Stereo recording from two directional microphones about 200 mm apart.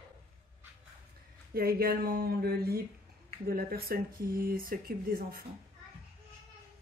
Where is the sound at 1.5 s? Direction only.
50° right (ahead or behind).